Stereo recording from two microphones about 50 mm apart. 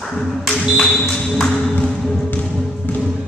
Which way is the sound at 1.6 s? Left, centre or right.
Centre.